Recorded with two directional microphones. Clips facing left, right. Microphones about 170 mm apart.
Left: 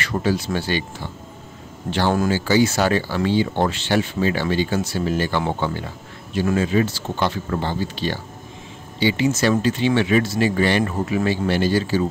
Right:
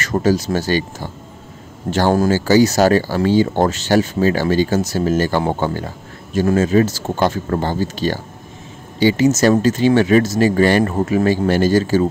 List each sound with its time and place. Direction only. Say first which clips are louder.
0.0 s speech: right 5 dB; 40° right (ahead or behind)